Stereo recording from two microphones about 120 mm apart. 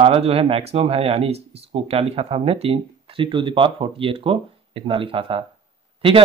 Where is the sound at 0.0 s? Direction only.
55° right (ahead or behind).